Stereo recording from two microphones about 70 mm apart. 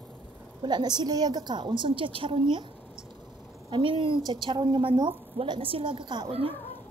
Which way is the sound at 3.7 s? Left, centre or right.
Right.